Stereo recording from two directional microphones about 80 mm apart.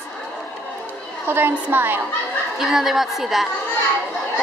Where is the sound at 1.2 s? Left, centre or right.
Right.